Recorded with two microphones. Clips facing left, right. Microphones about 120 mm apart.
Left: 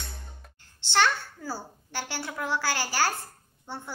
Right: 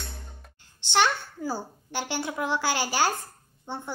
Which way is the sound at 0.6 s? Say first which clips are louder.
Right 1 dB; 15° right (ahead or behind).